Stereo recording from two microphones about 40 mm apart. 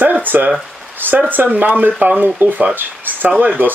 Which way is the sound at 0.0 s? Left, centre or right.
Right.